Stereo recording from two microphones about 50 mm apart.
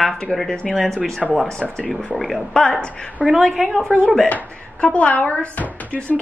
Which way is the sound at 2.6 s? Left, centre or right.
Centre.